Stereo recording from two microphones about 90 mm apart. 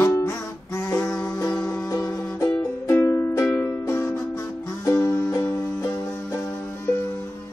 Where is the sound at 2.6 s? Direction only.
30° left (ahead or behind).